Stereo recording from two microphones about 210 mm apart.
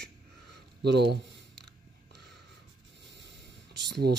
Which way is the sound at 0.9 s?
50° right (ahead or behind).